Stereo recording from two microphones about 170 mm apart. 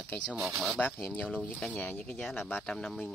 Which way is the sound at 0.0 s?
5° left (ahead or behind).